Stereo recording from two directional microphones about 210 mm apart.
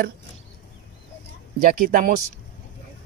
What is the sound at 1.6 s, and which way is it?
Speech, 40° right (ahead or behind).